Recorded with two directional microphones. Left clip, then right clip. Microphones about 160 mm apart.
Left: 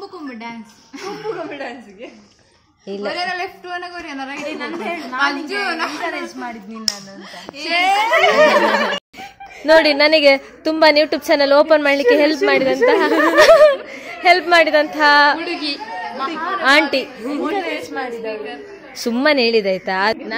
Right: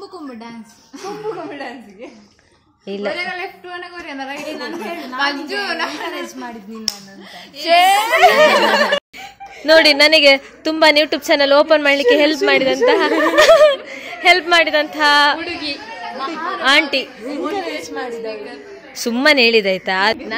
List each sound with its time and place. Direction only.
2.9 s a woman's voice: 5° right (ahead or behind)
3.2 s a man's voice: 60° left (ahead or behind)
4.5 s a woman's voice: 15° right (ahead or behind)
5.2 s a woman's voice: 90° left
7.6 s a child's voice: 90° right
8.5 s a sound: 90° right
9.7 s a woman's voice: 5° left (ahead or behind)
15.4 s speech: 90° left
16.6 s a woman's voice: 5° left (ahead or behind)
17.5 s a sound: centre (ahead or behind)
18.1 s a woman's voice: 15° left (ahead or behind)
18.9 s a woman's voice: centre (ahead or behind)